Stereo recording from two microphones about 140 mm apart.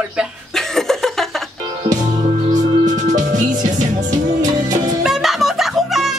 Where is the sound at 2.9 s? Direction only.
65° right (ahead or behind).